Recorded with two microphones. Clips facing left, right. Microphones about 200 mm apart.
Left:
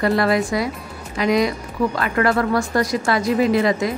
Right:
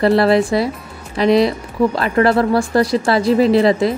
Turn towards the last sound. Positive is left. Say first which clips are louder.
# right 5 dB
turn(degrees=-30)  # may be behind; listen again after turning